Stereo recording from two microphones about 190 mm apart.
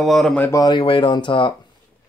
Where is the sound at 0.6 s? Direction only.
25° left (ahead or behind).